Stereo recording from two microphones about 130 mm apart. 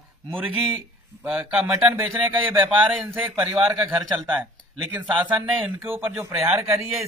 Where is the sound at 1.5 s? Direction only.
10° right (ahead or behind).